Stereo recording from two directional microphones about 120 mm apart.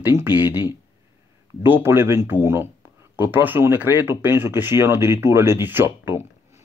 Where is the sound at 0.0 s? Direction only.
20° right (ahead or behind).